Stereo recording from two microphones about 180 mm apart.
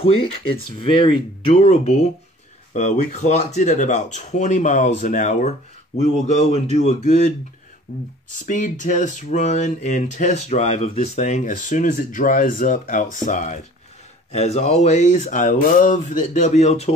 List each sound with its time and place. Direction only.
0.0 s speech: 30° left (ahead or behind)